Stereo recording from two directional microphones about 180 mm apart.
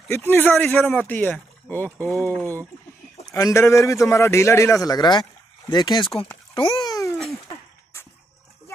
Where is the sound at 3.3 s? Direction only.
20° left (ahead or behind).